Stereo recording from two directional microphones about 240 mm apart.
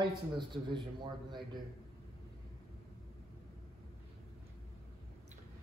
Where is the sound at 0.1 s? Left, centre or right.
Centre.